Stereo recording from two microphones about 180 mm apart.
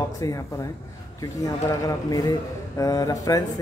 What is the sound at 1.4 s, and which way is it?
A man's voice, 20° left (ahead or behind).